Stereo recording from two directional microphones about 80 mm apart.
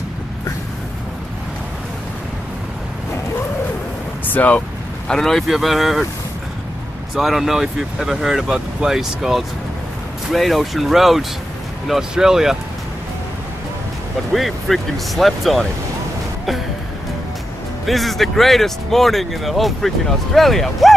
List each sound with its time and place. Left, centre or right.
4.3 s vehicle: centre
5.1 s speech: centre
7.2 s speech: centre
14.3 s speech: centre
17.8 s speech: centre